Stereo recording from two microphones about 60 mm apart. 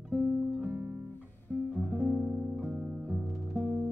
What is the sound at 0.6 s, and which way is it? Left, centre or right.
Guitar, right.